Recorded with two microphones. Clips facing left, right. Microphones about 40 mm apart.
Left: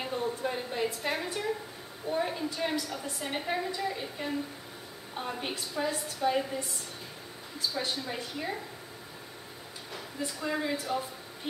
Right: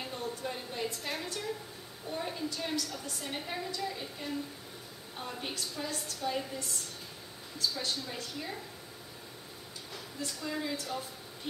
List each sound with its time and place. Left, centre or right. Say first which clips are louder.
0.0 s a woman's voice: left 6 dB; centre
9.9 s a woman's voice: left 4 dB; centre